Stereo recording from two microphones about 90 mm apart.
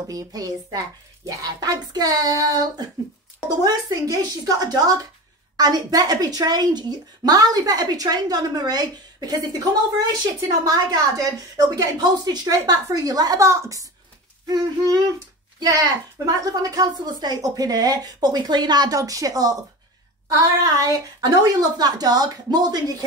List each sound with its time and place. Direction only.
0.0 s a woman's voice: 40° right (ahead or behind)
13.5 s a woman's voice: 30° right (ahead or behind)
14.4 s speech: 45° right (ahead or behind)
16.3 s speech: 45° right (ahead or behind)
18.9 s a woman's voice: 40° right (ahead or behind)